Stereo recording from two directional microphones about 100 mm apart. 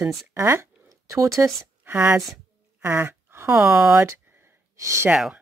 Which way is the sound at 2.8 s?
25° right (ahead or behind).